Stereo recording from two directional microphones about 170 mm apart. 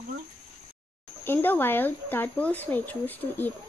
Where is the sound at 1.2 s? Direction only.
10° left (ahead or behind).